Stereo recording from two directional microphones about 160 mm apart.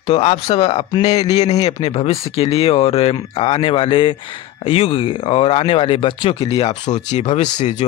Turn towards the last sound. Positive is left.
turn(degrees=45)  # may be behind; listen again after turning